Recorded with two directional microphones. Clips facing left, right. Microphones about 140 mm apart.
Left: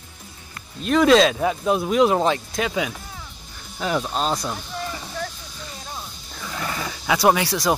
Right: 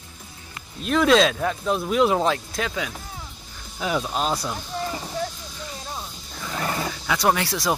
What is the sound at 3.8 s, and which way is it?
Speech, 5° right (ahead or behind).